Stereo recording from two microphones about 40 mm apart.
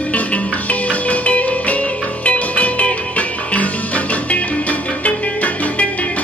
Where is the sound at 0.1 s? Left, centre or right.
Left.